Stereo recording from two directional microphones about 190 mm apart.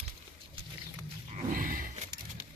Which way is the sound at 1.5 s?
45° right (ahead or behind).